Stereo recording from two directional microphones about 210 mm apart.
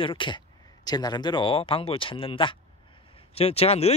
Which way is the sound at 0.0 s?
25° left (ahead or behind).